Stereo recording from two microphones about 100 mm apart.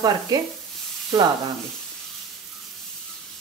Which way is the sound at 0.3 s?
40° right (ahead or behind).